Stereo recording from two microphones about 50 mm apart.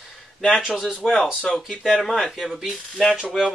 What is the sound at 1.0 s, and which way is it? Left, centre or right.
Speech, centre.